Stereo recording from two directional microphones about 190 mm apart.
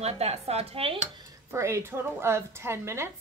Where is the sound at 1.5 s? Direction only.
15° right (ahead or behind).